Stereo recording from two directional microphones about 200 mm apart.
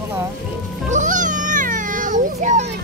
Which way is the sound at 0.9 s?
40° right (ahead or behind).